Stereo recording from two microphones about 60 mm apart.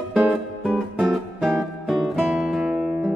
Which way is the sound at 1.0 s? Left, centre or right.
Centre.